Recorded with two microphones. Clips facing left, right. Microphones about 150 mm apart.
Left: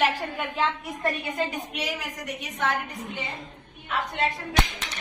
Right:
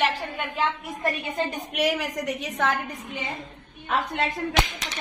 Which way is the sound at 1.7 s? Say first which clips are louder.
Right 8 dB; 70° right (ahead or behind).